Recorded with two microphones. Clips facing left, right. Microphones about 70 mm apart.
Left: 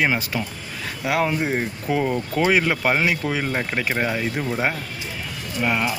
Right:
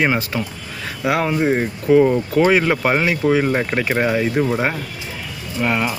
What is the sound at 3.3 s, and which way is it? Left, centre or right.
Speech, centre.